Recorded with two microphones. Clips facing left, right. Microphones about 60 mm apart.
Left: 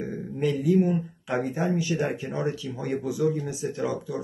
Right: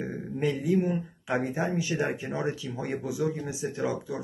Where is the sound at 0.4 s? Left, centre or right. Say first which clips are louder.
Left 4 dB; centre.